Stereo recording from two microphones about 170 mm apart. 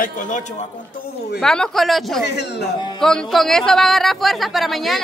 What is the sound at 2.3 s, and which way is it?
Speech, 80° left.